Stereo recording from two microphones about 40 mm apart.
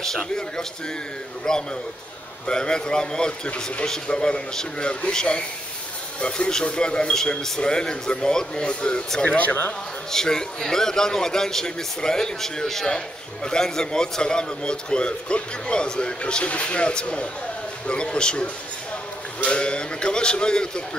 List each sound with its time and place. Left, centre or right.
1.5 s a man's voice: centre
3.4 s speech: left
3.8 s a man's voice: centre
9.2 s speech: left
10.1 s a man's voice: centre